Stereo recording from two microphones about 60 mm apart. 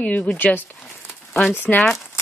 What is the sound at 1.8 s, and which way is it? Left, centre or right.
Speech, centre.